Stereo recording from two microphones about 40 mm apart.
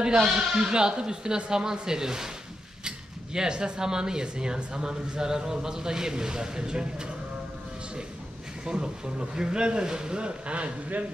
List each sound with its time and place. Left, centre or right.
0.0 s speech: centre
3.3 s speech: right
8.6 s speech: centre; by 11.1 s right